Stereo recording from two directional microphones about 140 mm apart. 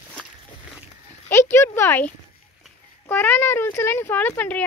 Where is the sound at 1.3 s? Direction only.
20° left (ahead or behind).